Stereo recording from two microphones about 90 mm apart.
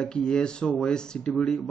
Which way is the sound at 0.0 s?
5° left (ahead or behind).